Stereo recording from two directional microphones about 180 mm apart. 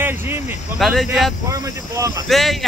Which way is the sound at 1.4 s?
20° right (ahead or behind).